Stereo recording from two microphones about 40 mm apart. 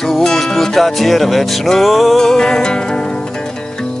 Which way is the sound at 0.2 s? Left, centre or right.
Centre.